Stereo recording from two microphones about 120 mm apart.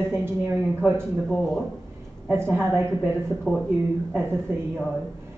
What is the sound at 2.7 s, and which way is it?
Speech, 5° right (ahead or behind).